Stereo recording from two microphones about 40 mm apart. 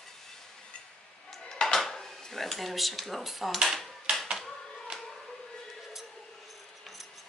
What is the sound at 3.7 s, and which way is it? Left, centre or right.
Typewriter, centre.